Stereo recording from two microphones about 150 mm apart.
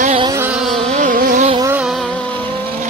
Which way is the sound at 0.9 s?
65° right (ahead or behind).